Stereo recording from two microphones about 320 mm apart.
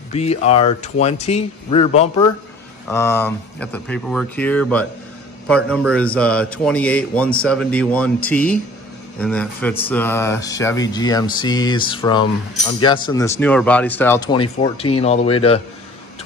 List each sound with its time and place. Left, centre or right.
0.1 s a man's voice: centre